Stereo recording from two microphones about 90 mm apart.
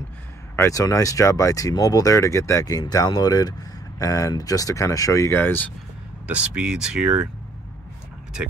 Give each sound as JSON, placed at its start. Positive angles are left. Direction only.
{"t": 0.6, "sound": "speech", "side_deg": 40}
{"t": 6.3, "sound": "speech", "side_deg": -10}